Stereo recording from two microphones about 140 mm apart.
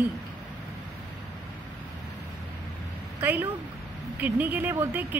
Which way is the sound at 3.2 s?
15° right (ahead or behind).